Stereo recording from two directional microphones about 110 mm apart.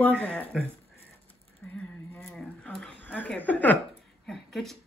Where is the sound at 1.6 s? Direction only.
15° left (ahead or behind).